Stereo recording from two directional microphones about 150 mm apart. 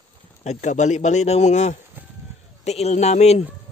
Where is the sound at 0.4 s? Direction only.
50° left (ahead or behind).